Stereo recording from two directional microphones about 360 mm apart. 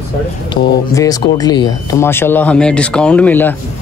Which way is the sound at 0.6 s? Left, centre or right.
Left.